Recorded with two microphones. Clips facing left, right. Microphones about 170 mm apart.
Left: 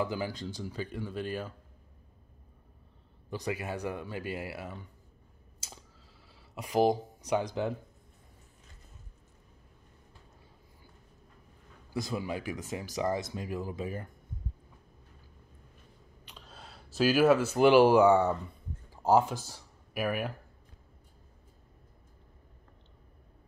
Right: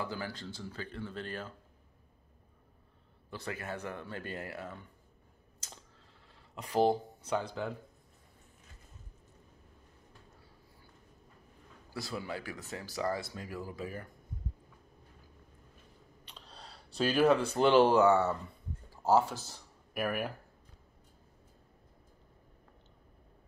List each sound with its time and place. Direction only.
0.0 s speech: 15° left (ahead or behind)
3.3 s speech: 15° left (ahead or behind)
6.2 s speech: 10° left (ahead or behind)
11.9 s speech: 15° left (ahead or behind)
16.3 s speech: centre (ahead or behind)